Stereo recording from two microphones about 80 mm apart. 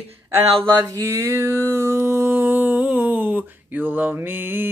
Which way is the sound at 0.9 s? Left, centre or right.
Right.